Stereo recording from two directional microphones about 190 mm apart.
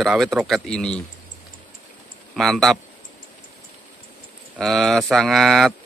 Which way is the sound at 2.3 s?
Centre (ahead or behind).